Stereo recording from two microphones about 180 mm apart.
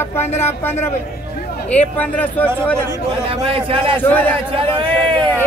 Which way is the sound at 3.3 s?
30° right (ahead or behind).